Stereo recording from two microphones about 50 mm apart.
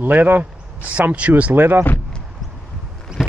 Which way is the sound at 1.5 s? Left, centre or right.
Right.